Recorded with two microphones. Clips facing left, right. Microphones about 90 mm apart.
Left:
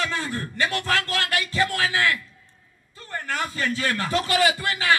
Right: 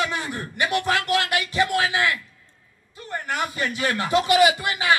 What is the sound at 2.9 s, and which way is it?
A man's voice, 20° right (ahead or behind).